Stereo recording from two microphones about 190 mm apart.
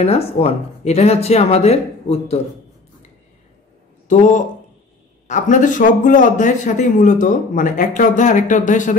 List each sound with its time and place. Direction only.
0.0 s a man's voice: 30° left (ahead or behind)
4.1 s a man's voice: 40° left (ahead or behind)